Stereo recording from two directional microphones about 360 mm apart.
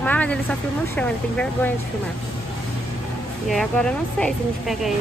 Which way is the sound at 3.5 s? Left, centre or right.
Centre.